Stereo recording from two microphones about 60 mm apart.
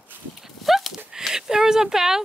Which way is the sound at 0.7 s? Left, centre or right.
Centre.